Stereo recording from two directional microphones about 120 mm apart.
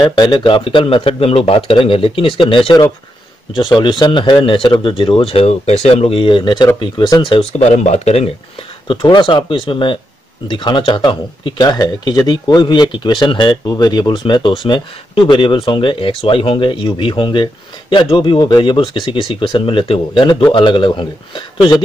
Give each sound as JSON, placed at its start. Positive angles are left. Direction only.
{"t": 0.0, "sound": "speech", "side_deg": 40}
{"t": 7.5, "sound": "speech", "side_deg": 75}
{"t": 8.8, "sound": "speech", "side_deg": 45}